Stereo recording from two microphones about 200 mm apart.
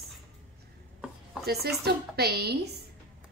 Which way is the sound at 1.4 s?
50° right (ahead or behind).